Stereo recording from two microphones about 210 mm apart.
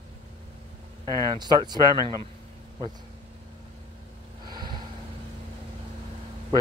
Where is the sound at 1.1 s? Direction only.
20° right (ahead or behind).